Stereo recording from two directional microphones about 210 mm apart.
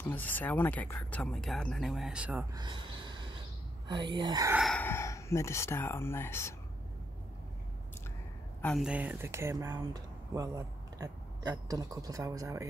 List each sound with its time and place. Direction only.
0.1 s speech: 10° left (ahead or behind)
2.5 s a sound: 20° right (ahead or behind)
3.9 s speech: 20° right (ahead or behind)
4.6 s speech: 5° left (ahead or behind)
8.5 s speech: 5° left (ahead or behind)
8.8 s speech: 5° right (ahead or behind)